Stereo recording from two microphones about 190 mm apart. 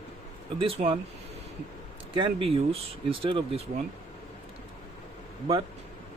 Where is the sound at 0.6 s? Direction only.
30° right (ahead or behind).